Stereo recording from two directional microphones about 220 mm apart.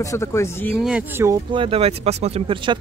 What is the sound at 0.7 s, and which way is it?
Speech, 5° right (ahead or behind).